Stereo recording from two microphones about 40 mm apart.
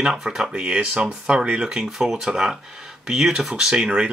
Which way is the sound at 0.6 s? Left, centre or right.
Right.